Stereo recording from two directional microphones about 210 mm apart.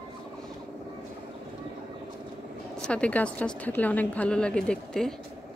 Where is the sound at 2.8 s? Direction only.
5° left (ahead or behind).